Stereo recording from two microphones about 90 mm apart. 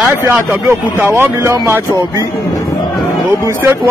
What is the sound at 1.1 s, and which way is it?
Speech, 30° right (ahead or behind).